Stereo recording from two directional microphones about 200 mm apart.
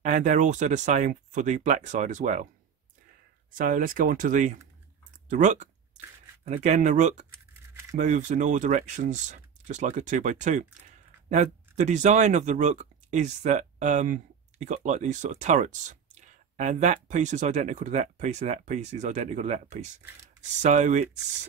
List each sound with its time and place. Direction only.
0.0 s speech: 40° right (ahead or behind)
3.5 s speech: 45° right (ahead or behind)